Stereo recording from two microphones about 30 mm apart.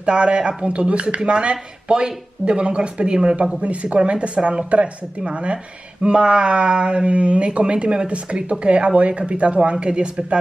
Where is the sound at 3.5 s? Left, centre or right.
Right.